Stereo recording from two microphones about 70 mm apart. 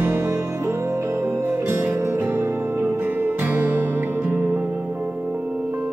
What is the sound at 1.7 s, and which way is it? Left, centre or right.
Music, right.